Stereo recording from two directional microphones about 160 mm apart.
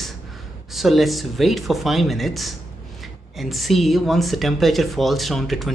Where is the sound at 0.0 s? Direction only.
Centre (ahead or behind).